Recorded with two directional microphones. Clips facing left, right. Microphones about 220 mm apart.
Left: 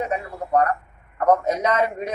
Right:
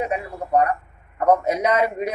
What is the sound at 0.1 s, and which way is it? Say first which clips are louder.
A man's voice: right 1 dB; 10° right (ahead or behind).